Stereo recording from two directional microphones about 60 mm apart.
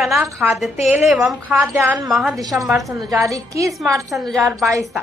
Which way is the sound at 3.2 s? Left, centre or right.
Right.